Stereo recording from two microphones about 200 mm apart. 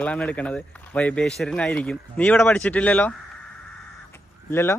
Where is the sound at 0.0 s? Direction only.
5° left (ahead or behind).